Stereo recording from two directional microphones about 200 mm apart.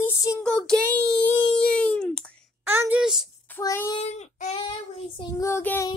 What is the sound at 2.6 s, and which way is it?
Child singing, 10° right (ahead or behind).